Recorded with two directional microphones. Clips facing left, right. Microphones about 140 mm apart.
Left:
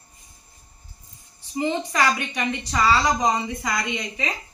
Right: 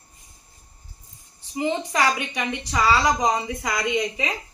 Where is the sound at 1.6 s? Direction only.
10° right (ahead or behind).